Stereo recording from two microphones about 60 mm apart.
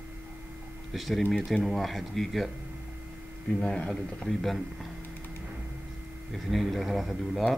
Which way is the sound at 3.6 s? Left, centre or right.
Centre.